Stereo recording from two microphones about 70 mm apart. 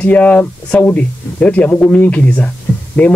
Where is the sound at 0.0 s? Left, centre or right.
Centre.